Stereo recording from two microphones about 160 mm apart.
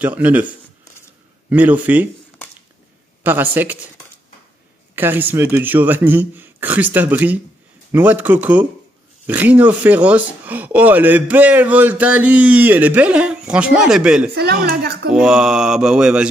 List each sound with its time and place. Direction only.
0.0 s speech: 10° right (ahead or behind)
3.3 s speech: 10° right (ahead or behind)
4.9 s speech: 10° right (ahead or behind)
14.3 s speech: 90° right
15.0 s mantra: 5° right (ahead or behind)